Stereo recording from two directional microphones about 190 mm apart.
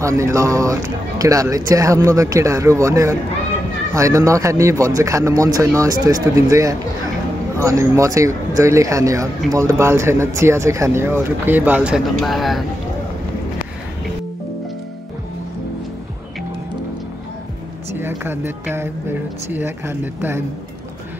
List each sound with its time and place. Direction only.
0.0 s speech: 15° right (ahead or behind); by 12.6 s centre (ahead or behind)
17.9 s speech: 10° right (ahead or behind)